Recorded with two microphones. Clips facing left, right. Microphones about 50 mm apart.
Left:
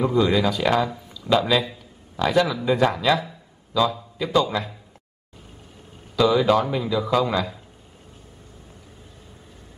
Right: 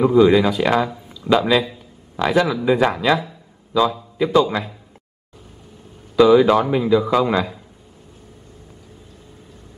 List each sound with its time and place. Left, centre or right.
0.0 s a man's voice: centre
6.1 s speech: centre